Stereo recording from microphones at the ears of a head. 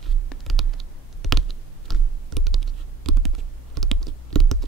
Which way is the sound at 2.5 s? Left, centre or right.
Right.